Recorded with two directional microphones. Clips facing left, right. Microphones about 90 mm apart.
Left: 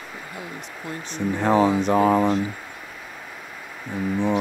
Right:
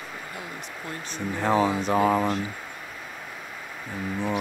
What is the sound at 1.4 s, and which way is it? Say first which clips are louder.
Speech: left 3 dB; 55° left (ahead or behind).